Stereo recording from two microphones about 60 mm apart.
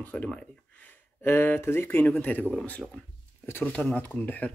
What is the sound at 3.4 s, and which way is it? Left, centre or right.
Speech, left.